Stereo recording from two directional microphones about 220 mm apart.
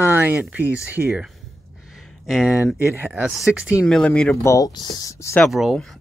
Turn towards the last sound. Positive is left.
turn(degrees=0)  # may be behind; listen again after turning